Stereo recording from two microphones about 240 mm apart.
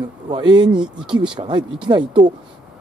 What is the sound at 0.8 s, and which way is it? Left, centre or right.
Speech, centre.